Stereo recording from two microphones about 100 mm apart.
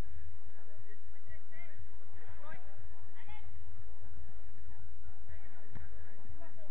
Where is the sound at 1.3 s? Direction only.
40° right (ahead or behind).